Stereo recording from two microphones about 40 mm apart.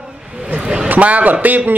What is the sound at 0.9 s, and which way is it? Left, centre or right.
Speech, right.